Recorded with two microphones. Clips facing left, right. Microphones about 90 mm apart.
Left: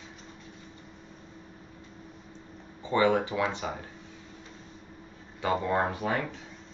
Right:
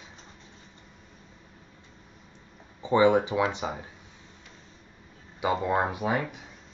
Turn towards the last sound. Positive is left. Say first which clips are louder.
# right 2 dB
turn(degrees=-10)  # may be behind; listen again after turning